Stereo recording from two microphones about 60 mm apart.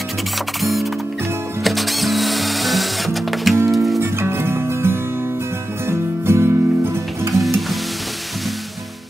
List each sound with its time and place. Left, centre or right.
0.6 s music: centre
1.6 s drill: centre
3.7 s music: centre
4.0 s music: right
7.3 s music: centre